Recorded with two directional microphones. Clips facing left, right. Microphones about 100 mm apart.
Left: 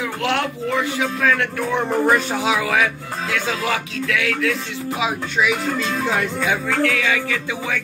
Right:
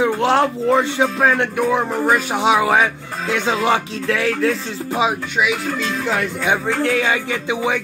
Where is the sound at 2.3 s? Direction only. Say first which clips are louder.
Right 4 dB; 25° right (ahead or behind).